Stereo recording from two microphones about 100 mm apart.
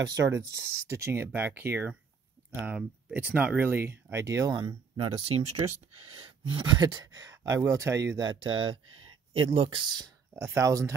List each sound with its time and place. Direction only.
0.0 s speech: 30° right (ahead or behind)
5.0 s speech: 65° right (ahead or behind); by 8.2 s 30° right (ahead or behind)
8.2 s speech: 55° right (ahead or behind)
10.3 s speech: 30° right (ahead or behind)